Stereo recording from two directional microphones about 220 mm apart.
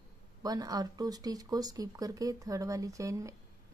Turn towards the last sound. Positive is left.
turn(degrees=-15)  # may be behind; listen again after turning